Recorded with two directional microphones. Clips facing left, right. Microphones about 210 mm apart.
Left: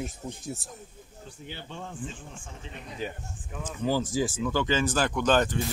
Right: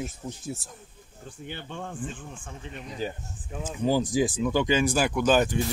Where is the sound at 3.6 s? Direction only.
15° right (ahead or behind).